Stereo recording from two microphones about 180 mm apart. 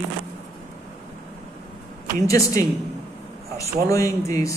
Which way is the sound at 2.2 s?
20° left (ahead or behind).